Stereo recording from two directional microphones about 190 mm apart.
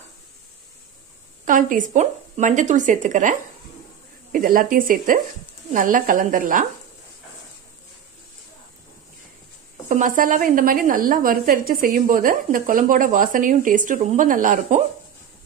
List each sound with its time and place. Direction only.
1.4 s a woman's voice: 45° right (ahead or behind)
9.8 s a woman's voice: 45° right (ahead or behind)